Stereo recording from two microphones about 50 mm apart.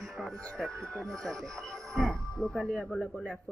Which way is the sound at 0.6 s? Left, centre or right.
Centre.